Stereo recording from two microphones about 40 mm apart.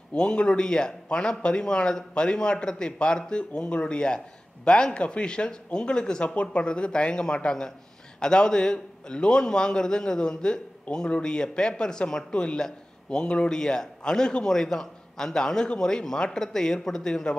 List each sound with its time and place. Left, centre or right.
0.1 s a man's voice: left